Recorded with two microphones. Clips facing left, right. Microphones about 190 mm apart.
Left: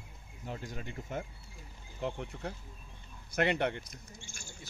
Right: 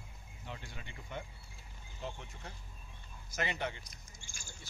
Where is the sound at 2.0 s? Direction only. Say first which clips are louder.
Left 8 dB; 60° left (ahead or behind).